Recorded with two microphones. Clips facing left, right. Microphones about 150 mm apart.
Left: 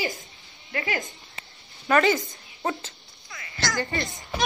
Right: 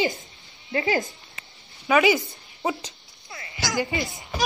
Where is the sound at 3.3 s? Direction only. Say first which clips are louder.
Right 3 dB; 30° right (ahead or behind).